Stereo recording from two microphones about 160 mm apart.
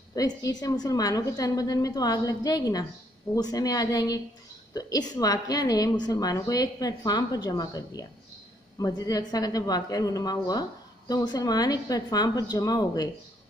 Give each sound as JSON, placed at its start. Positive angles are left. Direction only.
{"t": 0.1, "sound": "a woman's voice", "side_deg": 25}